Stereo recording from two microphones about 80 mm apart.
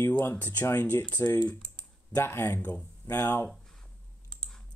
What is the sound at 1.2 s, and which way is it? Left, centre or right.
Speech, left.